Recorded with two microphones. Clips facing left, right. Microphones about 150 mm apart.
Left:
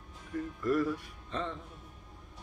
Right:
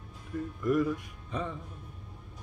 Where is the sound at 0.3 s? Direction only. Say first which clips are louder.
Right 1 dB; 10° right (ahead or behind).